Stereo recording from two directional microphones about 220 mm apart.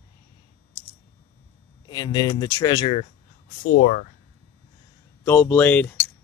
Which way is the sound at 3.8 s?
45° left (ahead or behind).